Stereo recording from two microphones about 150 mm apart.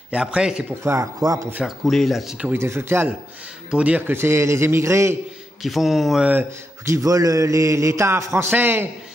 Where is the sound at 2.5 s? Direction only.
15° right (ahead or behind).